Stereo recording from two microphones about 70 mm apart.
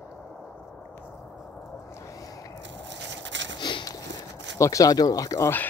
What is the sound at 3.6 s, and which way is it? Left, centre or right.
Sniff, left.